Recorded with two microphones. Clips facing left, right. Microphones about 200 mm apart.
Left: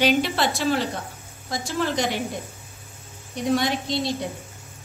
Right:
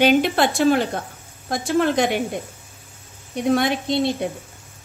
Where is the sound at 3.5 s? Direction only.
55° right (ahead or behind).